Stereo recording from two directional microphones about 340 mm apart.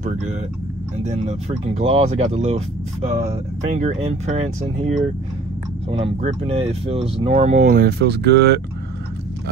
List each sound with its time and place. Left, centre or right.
0.0 s speech: right
5.9 s speech: centre